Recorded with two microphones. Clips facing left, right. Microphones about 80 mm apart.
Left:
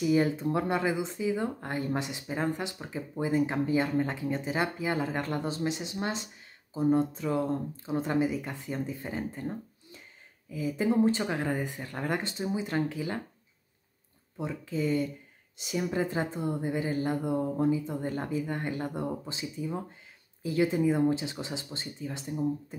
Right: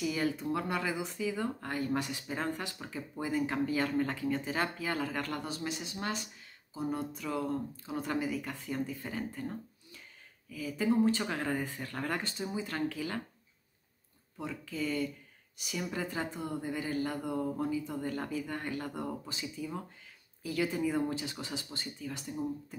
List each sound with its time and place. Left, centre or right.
0.0 s speech: left
14.3 s speech: left